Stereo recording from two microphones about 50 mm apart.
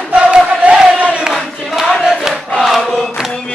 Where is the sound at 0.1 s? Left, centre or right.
Right.